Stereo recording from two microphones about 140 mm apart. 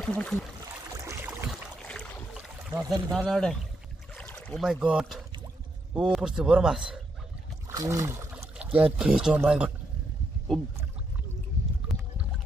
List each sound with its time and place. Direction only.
0.0 s speech: 5° left (ahead or behind)
0.9 s boat: 20° right (ahead or behind)
1.9 s boat: 10° left (ahead or behind)
2.7 s speech: 25° right (ahead or behind)
3.3 s a man's voice: 5° left (ahead or behind)
4.1 s boat: 10° left (ahead or behind)
4.6 s a man's voice: 5° right (ahead or behind)
7.6 s a sound: 20° right (ahead or behind)
8.4 s boat: 10° right (ahead or behind)
8.9 s a man's voice: 5° right (ahead or behind)
11.9 s a sound: centre (ahead or behind)